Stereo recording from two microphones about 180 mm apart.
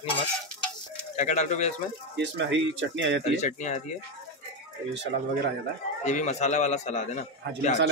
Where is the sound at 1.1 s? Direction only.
40° left (ahead or behind).